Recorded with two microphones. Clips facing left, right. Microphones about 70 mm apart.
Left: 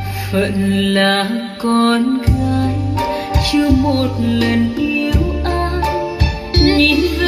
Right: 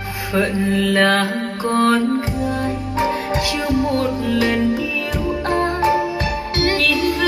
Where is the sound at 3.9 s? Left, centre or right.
Right.